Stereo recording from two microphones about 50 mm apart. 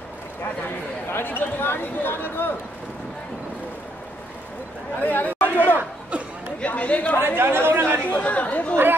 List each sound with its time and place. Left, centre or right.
1.0 s speech: left
5.0 s chatter: left
6.6 s speech: left
7.2 s speech: right
8.1 s speech: left